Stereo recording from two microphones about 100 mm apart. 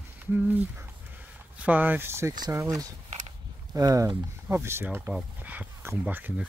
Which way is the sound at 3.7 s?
35° right (ahead or behind).